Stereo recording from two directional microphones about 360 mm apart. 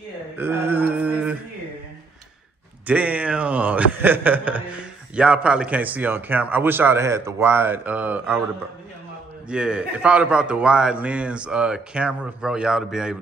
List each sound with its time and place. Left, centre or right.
0.4 s mantra: centre
2.9 s a man's voice: centre
9.5 s a man's voice: centre